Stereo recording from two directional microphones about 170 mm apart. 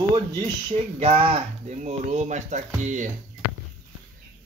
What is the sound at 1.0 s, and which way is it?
Speech, 35° right (ahead or behind).